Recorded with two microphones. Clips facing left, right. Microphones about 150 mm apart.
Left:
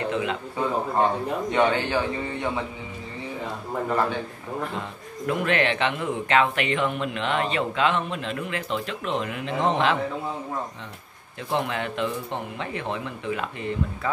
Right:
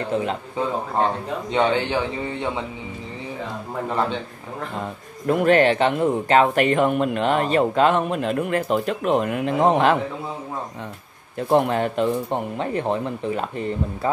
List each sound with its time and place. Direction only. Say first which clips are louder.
0.1 s speech: right 3 dB; 40° right (ahead or behind)
1.5 s speech: right 3 dB; 20° right (ahead or behind)
5.2 s speech: right 7 dB; 40° right (ahead or behind)
11.3 s speech: right 8 dB; 45° right (ahead or behind)